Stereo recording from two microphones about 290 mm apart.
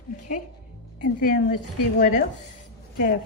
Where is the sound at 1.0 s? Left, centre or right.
Left.